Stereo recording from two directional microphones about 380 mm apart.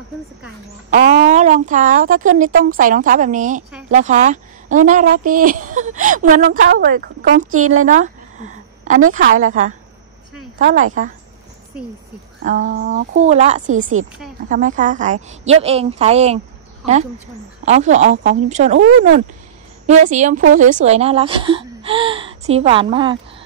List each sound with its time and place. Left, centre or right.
0.8 s speech: right
7.5 s speech: right
7.8 s a sound: centre
9.1 s speech: right
12.4 s speech: right
17.6 s speech: centre